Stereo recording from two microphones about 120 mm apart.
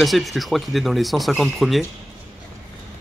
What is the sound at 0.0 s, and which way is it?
Speech, centre (ahead or behind).